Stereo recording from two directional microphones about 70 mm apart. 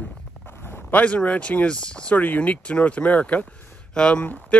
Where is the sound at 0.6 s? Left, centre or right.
Left.